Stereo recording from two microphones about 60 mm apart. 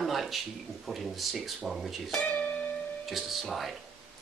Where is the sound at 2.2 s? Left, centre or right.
Left.